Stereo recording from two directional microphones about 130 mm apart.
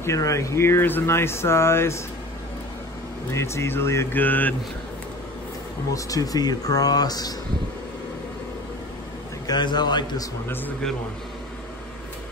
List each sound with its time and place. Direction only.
0.0 s speech: 25° left (ahead or behind)
3.3 s speech: 20° left (ahead or behind)
5.9 s speech: 25° left (ahead or behind)
9.5 s a man's voice: 35° left (ahead or behind)